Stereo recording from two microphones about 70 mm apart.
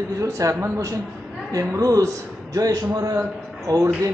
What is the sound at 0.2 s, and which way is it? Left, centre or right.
A man's voice, right.